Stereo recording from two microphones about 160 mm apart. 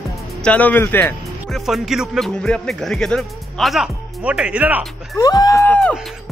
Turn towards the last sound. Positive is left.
turn(degrees=10)  # may be behind; listen again after turning